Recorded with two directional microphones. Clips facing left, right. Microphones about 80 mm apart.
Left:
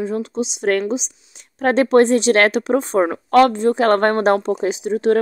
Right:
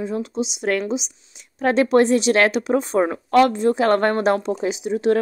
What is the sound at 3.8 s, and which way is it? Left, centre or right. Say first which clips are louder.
A woman's voice: left 3 dB; left.